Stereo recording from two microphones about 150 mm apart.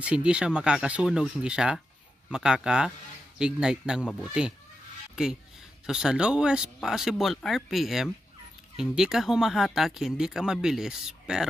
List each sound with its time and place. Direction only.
0.0 s speech: 5° right (ahead or behind)
4.0 s speech: 5° left (ahead or behind)
4.3 s speech: 5° right (ahead or behind)